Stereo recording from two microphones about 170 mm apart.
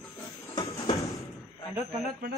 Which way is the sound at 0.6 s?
35° left (ahead or behind).